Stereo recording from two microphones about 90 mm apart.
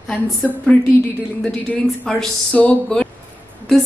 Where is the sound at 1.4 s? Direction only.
10° left (ahead or behind).